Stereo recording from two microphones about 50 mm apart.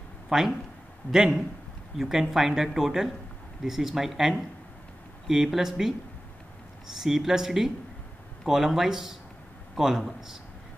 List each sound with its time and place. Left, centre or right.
0.3 s speech: centre
7.0 s speech: centre